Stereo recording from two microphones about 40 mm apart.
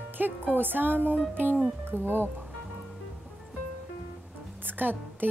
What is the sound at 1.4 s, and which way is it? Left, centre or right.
Speech, right.